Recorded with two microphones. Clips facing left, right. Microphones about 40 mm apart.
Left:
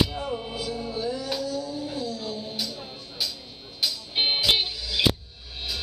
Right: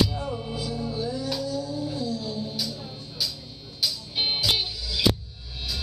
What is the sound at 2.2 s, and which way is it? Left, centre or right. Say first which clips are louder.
Music: right 1 dB; centre.